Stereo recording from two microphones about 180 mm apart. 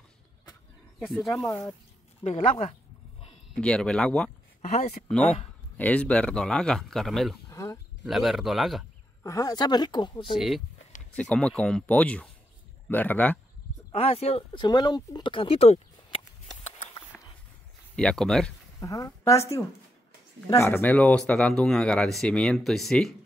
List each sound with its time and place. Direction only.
1.4 s speech: 5° left (ahead or behind)
2.2 s speech: 40° left (ahead or behind)
3.5 s speech: 5° left (ahead or behind)
4.6 s speech: 40° left (ahead or behind)
5.8 s speech: 5° left (ahead or behind)
7.4 s a sound: 15° left (ahead or behind)
8.0 s speech: centre (ahead or behind)
9.2 s speech: 20° left (ahead or behind)
10.3 s speech: centre (ahead or behind)
13.9 s speech: 35° left (ahead or behind)
17.1 s a sound: 5° left (ahead or behind)
17.9 s speech: 5° left (ahead or behind)
18.8 s speech: 20° left (ahead or behind)
20.4 s speech: 15° left (ahead or behind)